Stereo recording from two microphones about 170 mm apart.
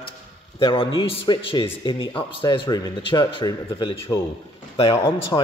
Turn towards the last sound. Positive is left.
turn(degrees=20)  # may be behind; listen again after turning